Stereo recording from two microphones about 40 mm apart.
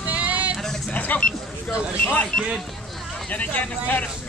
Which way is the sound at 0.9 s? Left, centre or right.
Left.